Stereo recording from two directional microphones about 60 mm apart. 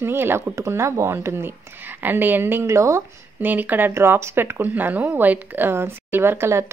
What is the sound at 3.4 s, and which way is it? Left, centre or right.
Speech, right.